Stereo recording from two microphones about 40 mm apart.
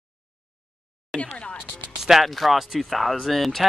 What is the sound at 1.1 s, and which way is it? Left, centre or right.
Speech, left.